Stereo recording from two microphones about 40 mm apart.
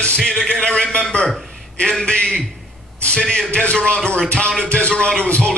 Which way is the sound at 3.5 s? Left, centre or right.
Left.